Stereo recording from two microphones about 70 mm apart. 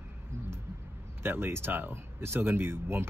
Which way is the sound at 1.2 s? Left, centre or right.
Right.